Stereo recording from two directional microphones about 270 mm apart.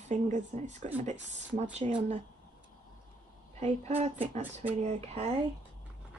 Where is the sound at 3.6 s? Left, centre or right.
Right.